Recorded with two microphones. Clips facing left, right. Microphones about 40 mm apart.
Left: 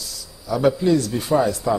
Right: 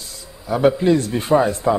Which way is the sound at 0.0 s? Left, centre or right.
Right.